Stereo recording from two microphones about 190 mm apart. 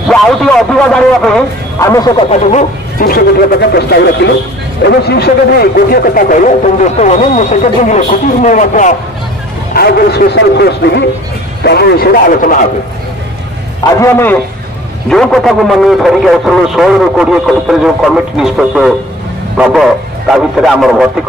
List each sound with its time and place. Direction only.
0.1 s a man's voice: 5° left (ahead or behind)
1.8 s a man's voice: 15° left (ahead or behind)
2.5 s a man's voice: 50° left (ahead or behind)
9.8 s a man's voice: 55° left (ahead or behind)
13.9 s a man's voice: 15° left (ahead or behind)